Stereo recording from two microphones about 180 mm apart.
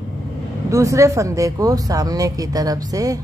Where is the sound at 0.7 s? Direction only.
15° right (ahead or behind).